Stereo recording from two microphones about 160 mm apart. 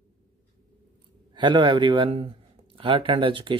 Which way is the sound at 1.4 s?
30° right (ahead or behind).